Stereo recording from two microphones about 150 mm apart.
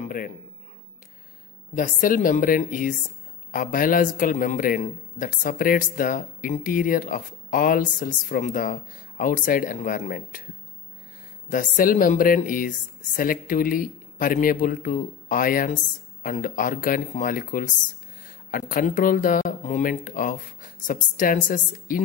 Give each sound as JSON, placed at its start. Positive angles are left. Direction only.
{"t": 0.0, "sound": "a sound", "side_deg": 65}
{"t": 1.8, "sound": "a man's voice", "side_deg": 65}
{"t": 11.4, "sound": "a man's voice", "side_deg": 65}